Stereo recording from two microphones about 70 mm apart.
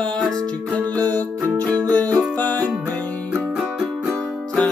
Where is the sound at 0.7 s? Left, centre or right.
Left.